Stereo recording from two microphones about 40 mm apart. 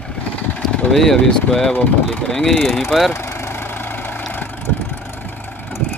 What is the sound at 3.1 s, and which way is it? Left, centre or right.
Vehicle, left.